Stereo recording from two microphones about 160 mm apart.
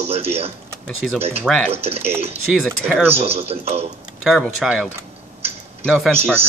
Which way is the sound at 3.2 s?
40° right (ahead or behind).